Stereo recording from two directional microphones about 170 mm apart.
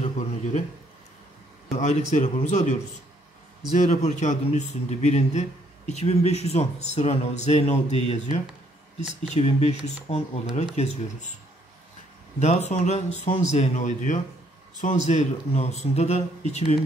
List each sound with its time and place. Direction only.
0.0 s a sound: 40° left (ahead or behind)
1.7 s speech: 40° left (ahead or behind)
3.9 s a man's voice: 45° left (ahead or behind)
9.3 s a man's voice: 40° left (ahead or behind)
12.4 s a man's voice: 40° left (ahead or behind)